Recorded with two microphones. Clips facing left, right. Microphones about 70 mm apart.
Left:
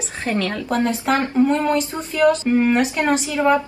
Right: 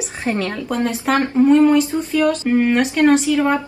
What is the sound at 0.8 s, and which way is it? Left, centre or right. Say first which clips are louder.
Speech: right 4 dB; centre.